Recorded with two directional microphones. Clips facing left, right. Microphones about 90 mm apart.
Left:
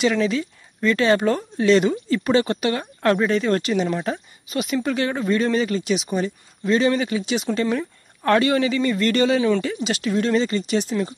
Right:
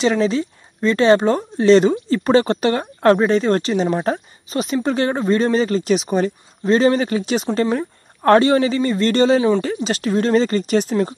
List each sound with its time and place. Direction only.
0.0 s speech: 30° right (ahead or behind)